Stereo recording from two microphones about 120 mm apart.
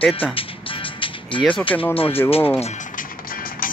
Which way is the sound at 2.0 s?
20° left (ahead or behind).